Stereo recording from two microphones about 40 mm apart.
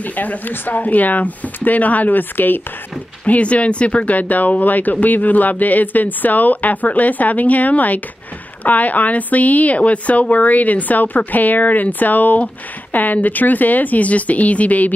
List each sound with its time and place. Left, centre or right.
0.0 s a woman's voice: left
3.3 s a woman's voice: left